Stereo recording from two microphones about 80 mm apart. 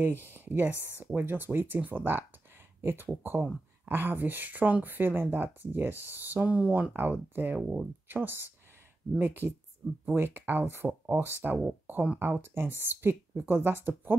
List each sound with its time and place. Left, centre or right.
0.2 s speech: right